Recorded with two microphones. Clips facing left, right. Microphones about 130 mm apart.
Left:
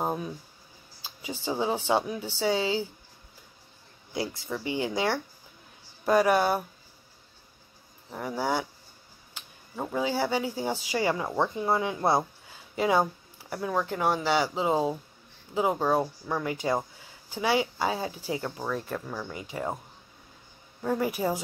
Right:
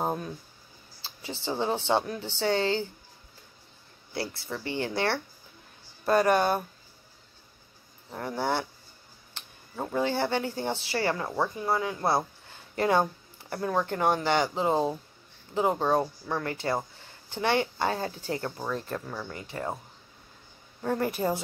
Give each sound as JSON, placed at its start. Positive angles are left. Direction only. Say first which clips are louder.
{"t": 0.0, "sound": "speech", "louder": "even", "side_deg": 5}
{"t": 4.1, "sound": "speech", "louder": "left 2 dB", "side_deg": 15}
{"t": 8.1, "sound": "speech", "louder": "even", "side_deg": 10}
{"t": 9.8, "sound": "speech", "louder": "even", "side_deg": 5}
{"t": 19.3, "sound": "speech", "louder": "left 1 dB", "side_deg": 15}
{"t": 20.8, "sound": "speech", "louder": "even", "side_deg": 5}